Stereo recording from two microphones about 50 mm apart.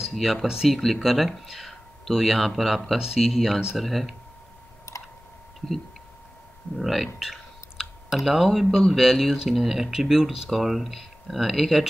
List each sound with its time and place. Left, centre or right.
0.1 s speech: centre
3.0 s speech: centre
3.3 s speech: centre
4.9 s typing: left
6.9 s clicking: centre
8.6 s speech: centre
8.9 s speech: centre